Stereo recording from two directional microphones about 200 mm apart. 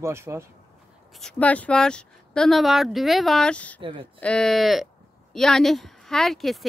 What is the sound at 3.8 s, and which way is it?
Speech, 25° right (ahead or behind).